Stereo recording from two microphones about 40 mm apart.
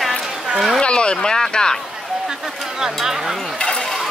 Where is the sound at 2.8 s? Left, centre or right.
Centre.